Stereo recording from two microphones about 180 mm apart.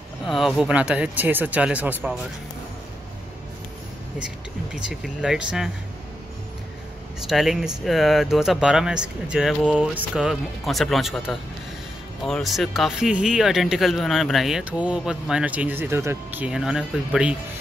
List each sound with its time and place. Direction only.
0.3 s speech: centre (ahead or behind)
4.7 s speech: 5° right (ahead or behind)
7.2 s speech: centre (ahead or behind)